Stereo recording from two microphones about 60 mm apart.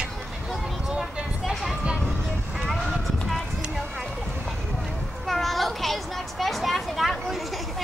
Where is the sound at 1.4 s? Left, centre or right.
Centre.